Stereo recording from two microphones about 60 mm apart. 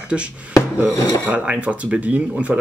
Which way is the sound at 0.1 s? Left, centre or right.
Centre.